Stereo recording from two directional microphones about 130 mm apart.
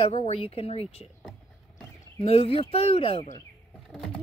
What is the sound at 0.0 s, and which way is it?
Speech, 50° left (ahead or behind).